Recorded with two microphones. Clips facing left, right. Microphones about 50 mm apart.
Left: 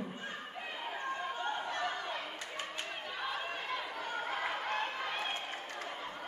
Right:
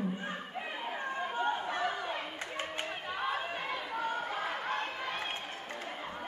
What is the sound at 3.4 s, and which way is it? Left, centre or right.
Chatter, centre.